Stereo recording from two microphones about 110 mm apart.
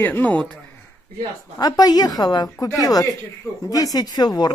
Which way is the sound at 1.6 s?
35° left (ahead or behind).